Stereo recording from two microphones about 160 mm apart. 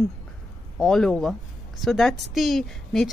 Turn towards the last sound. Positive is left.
turn(degrees=0)  # may be behind; listen again after turning